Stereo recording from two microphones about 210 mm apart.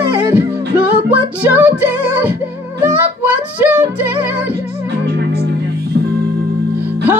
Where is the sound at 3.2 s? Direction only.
10° right (ahead or behind).